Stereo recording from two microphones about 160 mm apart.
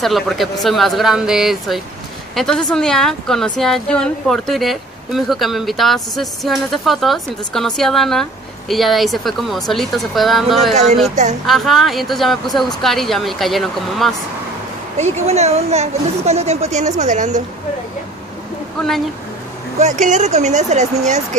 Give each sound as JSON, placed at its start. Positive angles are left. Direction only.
{"t": 0.0, "sound": "speech", "side_deg": 0}
{"t": 10.7, "sound": "a woman's voice", "side_deg": -45}
{"t": 11.4, "sound": "speech", "side_deg": 0}
{"t": 15.0, "sound": "a woman's voice", "side_deg": -45}
{"t": 19.8, "sound": "a woman's voice", "side_deg": -50}